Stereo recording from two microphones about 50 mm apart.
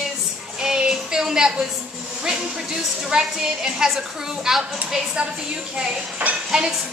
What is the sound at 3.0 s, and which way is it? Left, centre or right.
A woman's voice, centre.